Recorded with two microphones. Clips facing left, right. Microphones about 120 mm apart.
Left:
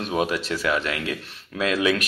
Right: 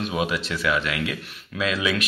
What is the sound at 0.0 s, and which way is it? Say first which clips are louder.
A man's voice: left 1 dB; 40° left (ahead or behind).